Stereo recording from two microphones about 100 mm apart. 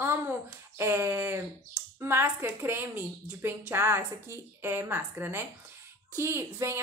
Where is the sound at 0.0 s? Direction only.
25° right (ahead or behind).